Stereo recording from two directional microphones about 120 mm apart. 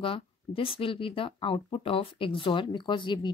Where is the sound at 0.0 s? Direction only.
50° left (ahead or behind).